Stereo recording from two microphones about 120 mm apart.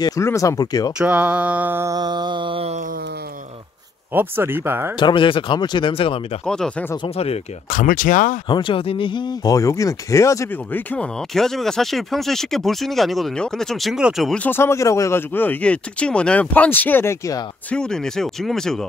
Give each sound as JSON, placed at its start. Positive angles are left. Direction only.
{"t": 0.0, "sound": "speech", "side_deg": 25}
{"t": 0.9, "sound": "mantra", "side_deg": -10}
{"t": 1.9, "sound": "music", "side_deg": -35}
{"t": 4.1, "sound": "speech", "side_deg": -15}
{"t": 4.9, "sound": "speech", "side_deg": 40}
{"t": 6.4, "sound": "speech", "side_deg": 5}
{"t": 7.2, "sound": "speech", "side_deg": 75}
{"t": 8.5, "sound": "speech", "side_deg": 40}
{"t": 11.3, "sound": "speech", "side_deg": 0}
{"t": 14.4, "sound": "speech", "side_deg": 20}
{"t": 17.6, "sound": "speech", "side_deg": 5}